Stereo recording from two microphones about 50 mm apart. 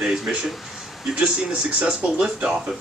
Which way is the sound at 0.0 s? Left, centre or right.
Centre.